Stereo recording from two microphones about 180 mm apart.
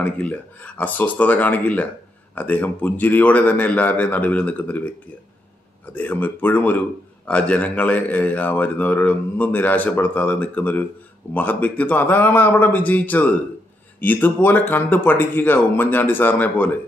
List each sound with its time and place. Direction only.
0.0 s a man's voice: 10° left (ahead or behind)
5.9 s a man's voice: 10° left (ahead or behind)